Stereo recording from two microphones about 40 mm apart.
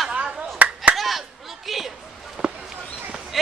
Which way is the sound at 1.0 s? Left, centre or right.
Centre.